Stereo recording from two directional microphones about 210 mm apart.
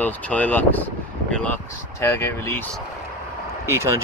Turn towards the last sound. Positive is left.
turn(degrees=-15)  # may be behind; listen again after turning